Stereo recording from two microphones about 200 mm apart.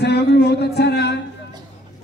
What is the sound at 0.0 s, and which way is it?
Speech, 55° left (ahead or behind).